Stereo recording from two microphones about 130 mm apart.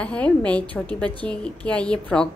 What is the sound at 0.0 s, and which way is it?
A woman's voice, 10° left (ahead or behind).